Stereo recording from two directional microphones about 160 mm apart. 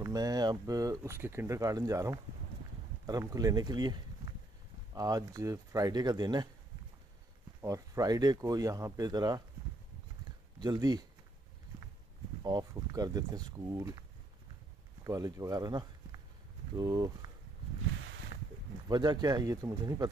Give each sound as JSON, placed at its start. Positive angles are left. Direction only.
{"t": 0.0, "sound": "speech", "side_deg": -25}
{"t": 7.6, "sound": "speech", "side_deg": -20}
{"t": 10.6, "sound": "speech", "side_deg": -25}
{"t": 12.4, "sound": "speech", "side_deg": -25}
{"t": 15.0, "sound": "speech", "side_deg": -20}
{"t": 18.9, "sound": "speech", "side_deg": -25}